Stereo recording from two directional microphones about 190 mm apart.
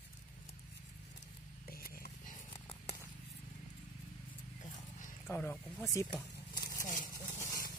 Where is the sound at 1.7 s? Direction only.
50° left (ahead or behind).